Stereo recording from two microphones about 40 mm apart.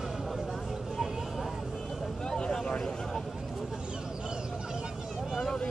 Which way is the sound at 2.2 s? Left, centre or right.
Centre.